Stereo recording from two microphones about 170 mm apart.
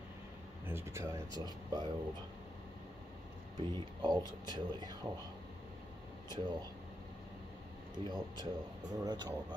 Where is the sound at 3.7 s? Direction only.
25° right (ahead or behind).